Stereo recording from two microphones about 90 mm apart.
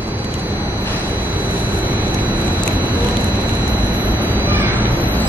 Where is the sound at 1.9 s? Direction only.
20° right (ahead or behind).